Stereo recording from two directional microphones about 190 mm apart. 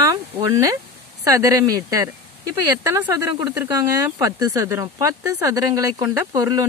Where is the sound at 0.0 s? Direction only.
15° right (ahead or behind).